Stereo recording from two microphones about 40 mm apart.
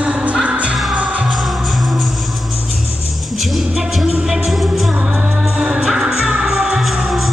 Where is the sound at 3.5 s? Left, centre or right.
Centre.